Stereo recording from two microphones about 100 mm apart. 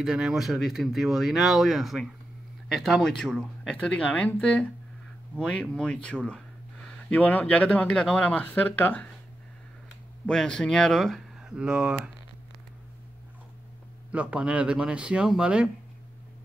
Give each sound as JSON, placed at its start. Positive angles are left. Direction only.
{"t": 0.0, "sound": "speech", "side_deg": -5}
{"t": 10.2, "sound": "speech", "side_deg": 10}
{"t": 14.1, "sound": "speech", "side_deg": -10}